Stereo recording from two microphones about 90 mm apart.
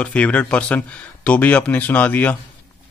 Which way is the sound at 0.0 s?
15° left (ahead or behind).